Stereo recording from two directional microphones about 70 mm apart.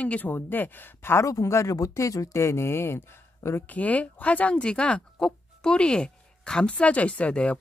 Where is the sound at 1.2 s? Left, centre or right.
Left.